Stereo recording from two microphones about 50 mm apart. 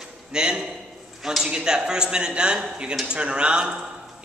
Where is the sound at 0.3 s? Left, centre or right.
Centre.